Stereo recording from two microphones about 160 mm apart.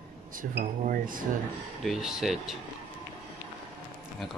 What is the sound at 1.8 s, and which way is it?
Speech, 5° right (ahead or behind).